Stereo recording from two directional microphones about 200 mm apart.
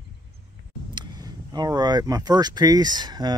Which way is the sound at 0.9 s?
20° right (ahead or behind).